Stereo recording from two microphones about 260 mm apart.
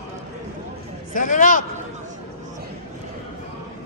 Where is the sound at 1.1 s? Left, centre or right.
Left.